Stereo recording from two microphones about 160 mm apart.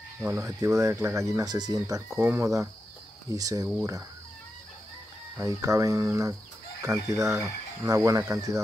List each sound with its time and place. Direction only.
0.2 s speech: 15° right (ahead or behind)
5.4 s speech: 20° right (ahead or behind)